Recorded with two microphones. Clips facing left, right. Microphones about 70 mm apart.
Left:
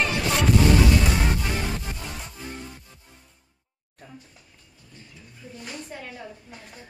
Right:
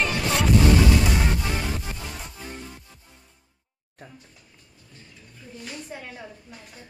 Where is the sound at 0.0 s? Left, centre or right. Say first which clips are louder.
Even; centre.